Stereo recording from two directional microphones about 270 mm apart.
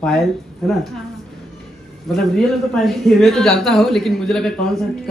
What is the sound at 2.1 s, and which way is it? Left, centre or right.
A woman's voice, centre.